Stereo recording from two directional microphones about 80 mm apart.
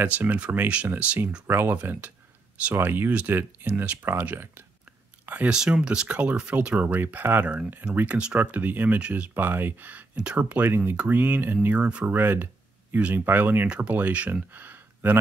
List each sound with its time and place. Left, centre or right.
0.0 s speech: right
1.5 s speech: right
1.8 s speech: centre
3.1 s speech: centre
12.2 s speech: right